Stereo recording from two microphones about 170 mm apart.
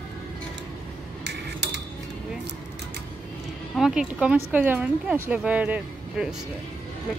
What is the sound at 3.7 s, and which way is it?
Speech, centre (ahead or behind).